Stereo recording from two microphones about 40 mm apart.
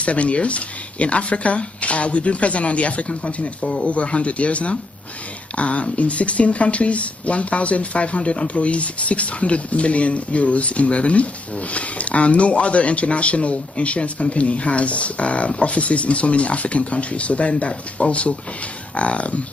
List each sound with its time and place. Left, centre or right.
0.0 s speech: left